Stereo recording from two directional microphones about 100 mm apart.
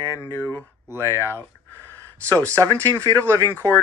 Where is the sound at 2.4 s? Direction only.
15° left (ahead or behind).